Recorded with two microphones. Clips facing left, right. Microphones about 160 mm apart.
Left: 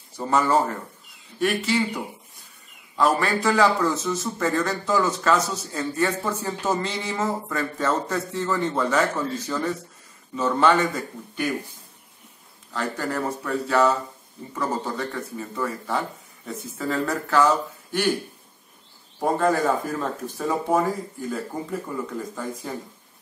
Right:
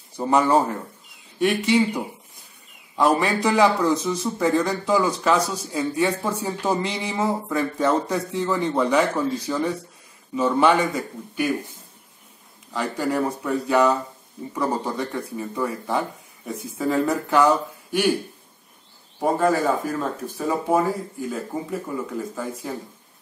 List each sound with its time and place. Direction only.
0.2 s a man's voice: 15° right (ahead or behind)
12.7 s a man's voice: 10° right (ahead or behind)
19.2 s a man's voice: 5° right (ahead or behind)